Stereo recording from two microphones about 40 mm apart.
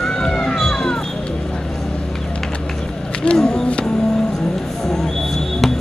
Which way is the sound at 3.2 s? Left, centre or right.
Left.